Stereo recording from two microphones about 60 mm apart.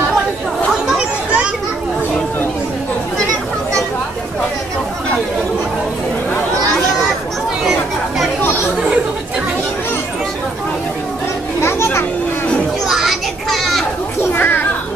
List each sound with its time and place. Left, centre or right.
0.8 s chatter: centre
11.6 s children playing: left
12.8 s children playing: centre
14.3 s children playing: left